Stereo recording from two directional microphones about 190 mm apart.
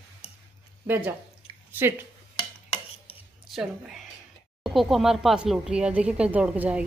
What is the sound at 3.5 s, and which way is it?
Speech, centre (ahead or behind).